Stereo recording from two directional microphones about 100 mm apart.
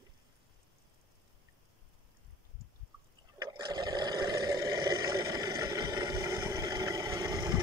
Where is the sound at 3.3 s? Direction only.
45° right (ahead or behind).